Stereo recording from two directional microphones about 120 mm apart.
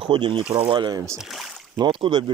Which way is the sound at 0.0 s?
45° right (ahead or behind).